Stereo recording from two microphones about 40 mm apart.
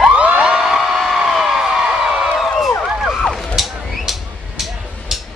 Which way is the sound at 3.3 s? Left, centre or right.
Centre.